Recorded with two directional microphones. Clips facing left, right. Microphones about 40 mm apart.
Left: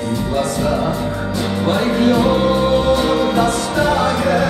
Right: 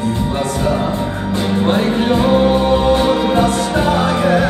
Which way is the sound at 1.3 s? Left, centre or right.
Right.